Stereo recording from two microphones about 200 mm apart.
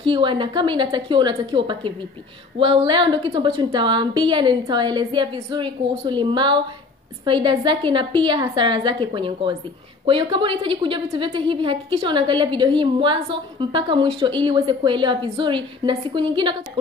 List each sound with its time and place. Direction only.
0.0 s a woman's voice: 25° right (ahead or behind)